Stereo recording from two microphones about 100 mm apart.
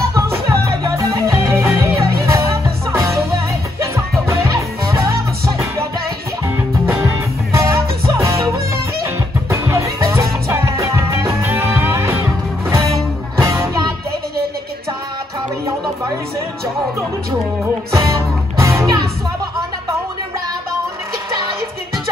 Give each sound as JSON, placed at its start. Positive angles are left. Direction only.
{"t": 0.1, "sound": "music", "side_deg": -30}
{"t": 13.4, "sound": "music", "side_deg": -30}
{"t": 17.9, "sound": "music", "side_deg": -30}